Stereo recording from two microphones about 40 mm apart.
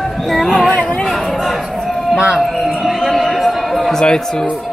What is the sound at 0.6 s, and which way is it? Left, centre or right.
Chatter, left.